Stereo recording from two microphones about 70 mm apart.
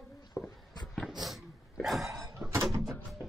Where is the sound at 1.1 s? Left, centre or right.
Centre.